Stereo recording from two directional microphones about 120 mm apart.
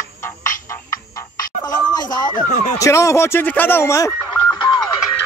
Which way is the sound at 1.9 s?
35° left (ahead or behind).